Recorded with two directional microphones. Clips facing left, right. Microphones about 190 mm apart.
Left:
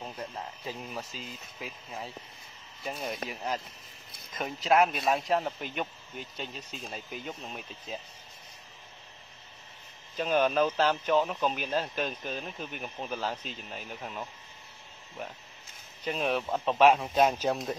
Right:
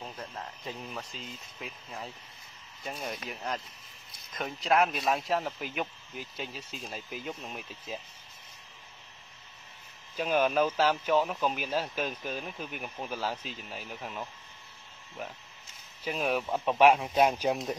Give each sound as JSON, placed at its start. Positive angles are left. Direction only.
{"t": 0.0, "sound": "cricket", "side_deg": 15}
{"t": 0.7, "sound": "speech", "side_deg": 5}
{"t": 10.1, "sound": "speech", "side_deg": -5}
{"t": 16.0, "sound": "speech", "side_deg": -5}